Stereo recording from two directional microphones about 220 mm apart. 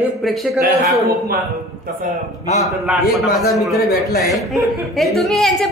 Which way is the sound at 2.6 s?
Centre (ahead or behind).